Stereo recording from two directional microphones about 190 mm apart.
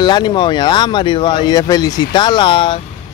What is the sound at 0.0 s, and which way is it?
Speech, 25° left (ahead or behind).